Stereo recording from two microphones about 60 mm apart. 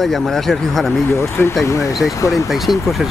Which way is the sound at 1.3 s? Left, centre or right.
Left.